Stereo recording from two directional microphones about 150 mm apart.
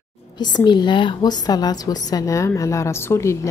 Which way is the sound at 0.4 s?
30° left (ahead or behind).